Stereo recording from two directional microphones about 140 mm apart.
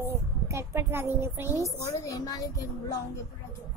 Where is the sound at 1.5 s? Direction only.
20° left (ahead or behind).